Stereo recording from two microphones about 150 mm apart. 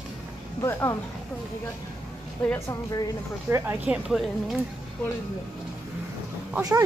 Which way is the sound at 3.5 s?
20° right (ahead or behind).